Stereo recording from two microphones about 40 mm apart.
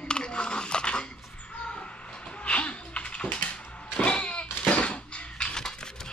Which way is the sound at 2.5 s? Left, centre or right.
Left.